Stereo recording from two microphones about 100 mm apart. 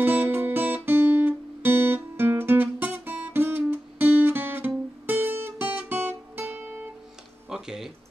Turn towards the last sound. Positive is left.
turn(degrees=-5)  # may be behind; listen again after turning